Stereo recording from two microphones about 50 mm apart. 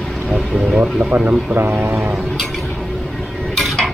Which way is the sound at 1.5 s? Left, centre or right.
Right.